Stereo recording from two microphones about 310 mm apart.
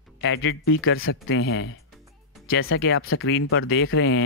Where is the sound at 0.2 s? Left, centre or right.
Left.